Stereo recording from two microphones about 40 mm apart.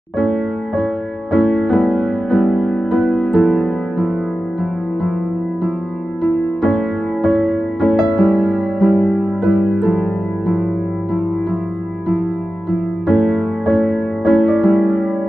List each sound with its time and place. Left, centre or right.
0.2 s music: centre
7.2 s music: centre
8.9 s music: centre
9.4 s music: centre
13.1 s music: centre